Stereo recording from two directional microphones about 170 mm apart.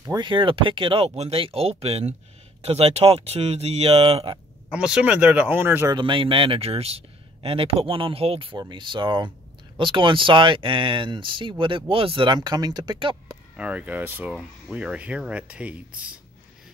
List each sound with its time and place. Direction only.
0.0 s speech: 25° right (ahead or behind)
4.6 s speech: 5° right (ahead or behind)
5.9 s speech: 30° right (ahead or behind)
13.6 s speech: 10° right (ahead or behind)